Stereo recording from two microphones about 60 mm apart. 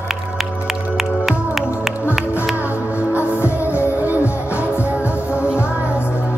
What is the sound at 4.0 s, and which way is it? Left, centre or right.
Music, right.